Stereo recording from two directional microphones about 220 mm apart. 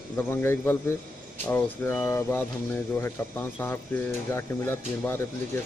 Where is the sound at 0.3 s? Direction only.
10° left (ahead or behind).